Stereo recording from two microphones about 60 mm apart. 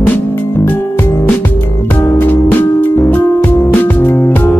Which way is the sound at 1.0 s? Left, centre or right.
Left.